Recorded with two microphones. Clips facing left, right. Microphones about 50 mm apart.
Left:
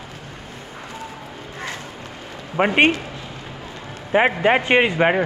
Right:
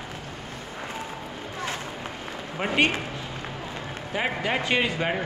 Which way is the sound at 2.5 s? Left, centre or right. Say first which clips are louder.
Left 7 dB; left.